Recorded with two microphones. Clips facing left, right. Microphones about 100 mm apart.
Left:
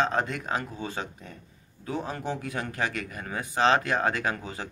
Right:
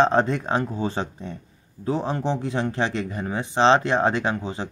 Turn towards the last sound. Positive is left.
turn(degrees=-25)  # may be behind; listen again after turning